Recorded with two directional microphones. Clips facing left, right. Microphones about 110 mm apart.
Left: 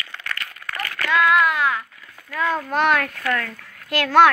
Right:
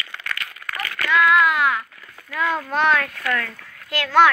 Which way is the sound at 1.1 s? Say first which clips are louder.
Right 1 dB; 20° left (ahead or behind).